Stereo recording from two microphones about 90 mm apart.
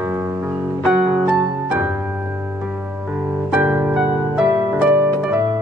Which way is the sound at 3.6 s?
20° right (ahead or behind).